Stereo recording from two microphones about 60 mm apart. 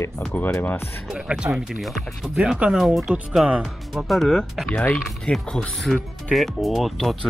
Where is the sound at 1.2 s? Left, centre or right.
Centre.